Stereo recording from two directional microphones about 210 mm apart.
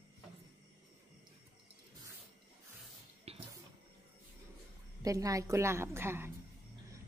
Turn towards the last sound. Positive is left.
turn(degrees=-10)  # may be behind; listen again after turning